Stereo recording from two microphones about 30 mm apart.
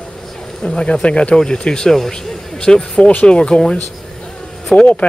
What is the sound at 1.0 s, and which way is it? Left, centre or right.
Speech, left.